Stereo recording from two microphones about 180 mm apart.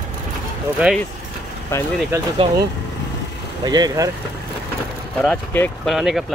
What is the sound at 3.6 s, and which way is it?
Speech, 20° right (ahead or behind).